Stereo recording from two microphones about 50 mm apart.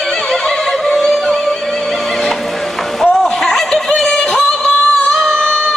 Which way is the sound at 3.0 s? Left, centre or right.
Centre.